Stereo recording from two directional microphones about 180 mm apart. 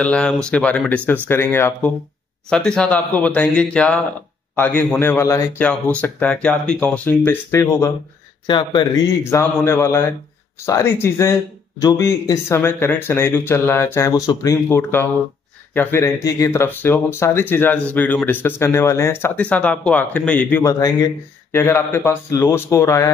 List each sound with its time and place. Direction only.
0.0 s speech: 5° left (ahead or behind)